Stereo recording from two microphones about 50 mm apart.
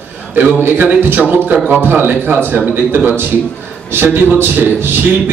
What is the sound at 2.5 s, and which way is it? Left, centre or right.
Speech, right.